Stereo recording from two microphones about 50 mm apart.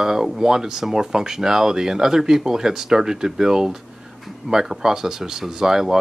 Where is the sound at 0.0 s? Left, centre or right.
Centre.